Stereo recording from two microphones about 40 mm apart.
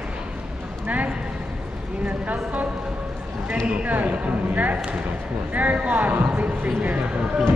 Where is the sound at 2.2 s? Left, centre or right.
Right.